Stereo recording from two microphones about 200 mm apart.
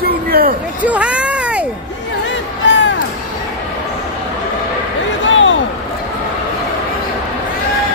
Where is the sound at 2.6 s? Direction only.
65° left (ahead or behind).